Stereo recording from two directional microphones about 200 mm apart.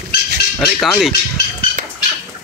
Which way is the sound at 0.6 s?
Centre (ahead or behind).